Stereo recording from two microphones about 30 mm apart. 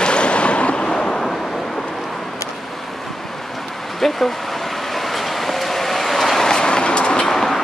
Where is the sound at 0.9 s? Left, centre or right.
Left.